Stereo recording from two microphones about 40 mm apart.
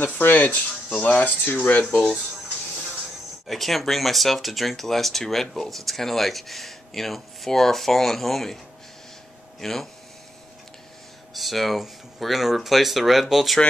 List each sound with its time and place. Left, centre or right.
0.0 s speech: left
1.9 s speech: centre
3.4 s speech: centre
9.6 s speech: centre
11.3 s speech: centre